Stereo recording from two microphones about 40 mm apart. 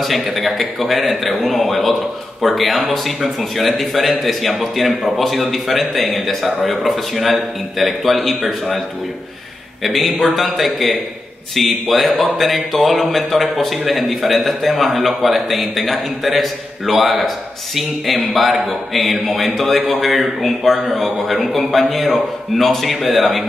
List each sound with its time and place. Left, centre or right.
0.0 s speech: centre
9.8 s speech: centre